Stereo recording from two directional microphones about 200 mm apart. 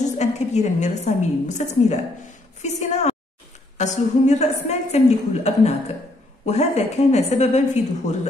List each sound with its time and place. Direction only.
0.2 s a woman's voice: 35° left (ahead or behind)